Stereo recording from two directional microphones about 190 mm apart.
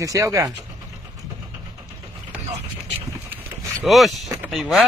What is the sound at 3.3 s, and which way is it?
Vehicle, centre (ahead or behind).